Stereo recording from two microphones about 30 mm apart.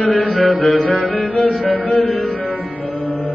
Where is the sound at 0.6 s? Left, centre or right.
Left.